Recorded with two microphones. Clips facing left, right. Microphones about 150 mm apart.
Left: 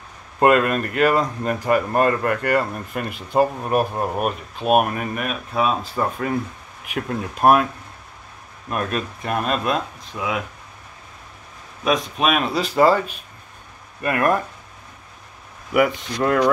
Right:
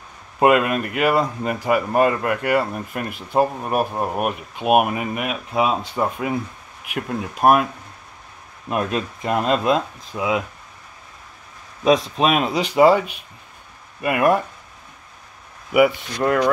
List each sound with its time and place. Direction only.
0.4 s speech: 5° right (ahead or behind)
8.6 s speech: 20° right (ahead or behind)
11.8 s speech: 30° right (ahead or behind); by 14.4 s 10° right (ahead or behind)
15.7 s speech: 5° right (ahead or behind)